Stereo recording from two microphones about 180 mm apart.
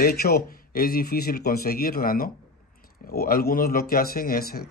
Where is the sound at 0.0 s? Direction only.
60° left (ahead or behind).